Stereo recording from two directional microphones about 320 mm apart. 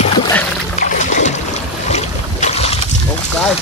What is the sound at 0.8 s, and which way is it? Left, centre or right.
Boat, left.